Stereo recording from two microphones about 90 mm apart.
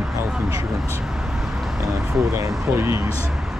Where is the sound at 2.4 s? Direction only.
25° right (ahead or behind).